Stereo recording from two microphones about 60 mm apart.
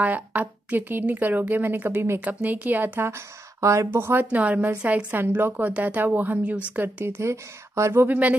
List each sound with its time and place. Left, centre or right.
0.0 s a woman's voice: right
3.6 s speech: right
3.9 s a woman's voice: right
5.7 s a woman's voice: right
7.2 s speech: right
8.1 s a woman's voice: right